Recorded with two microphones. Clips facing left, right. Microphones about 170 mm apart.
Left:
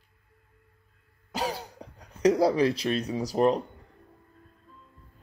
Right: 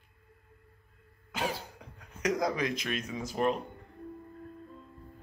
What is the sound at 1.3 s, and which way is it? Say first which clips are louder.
Speech: left 3 dB; 40° left (ahead or behind).